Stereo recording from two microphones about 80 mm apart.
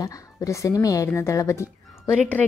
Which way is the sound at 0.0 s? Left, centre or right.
Left.